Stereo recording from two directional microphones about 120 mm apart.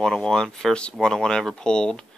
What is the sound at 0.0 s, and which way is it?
Speech, 5° left (ahead or behind).